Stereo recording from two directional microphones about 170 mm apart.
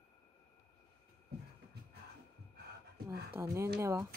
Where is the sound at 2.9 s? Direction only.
65° right (ahead or behind).